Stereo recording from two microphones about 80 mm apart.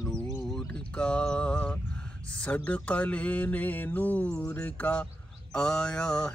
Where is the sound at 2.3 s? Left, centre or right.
Centre.